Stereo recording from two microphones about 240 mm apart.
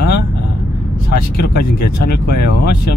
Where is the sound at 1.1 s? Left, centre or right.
Left.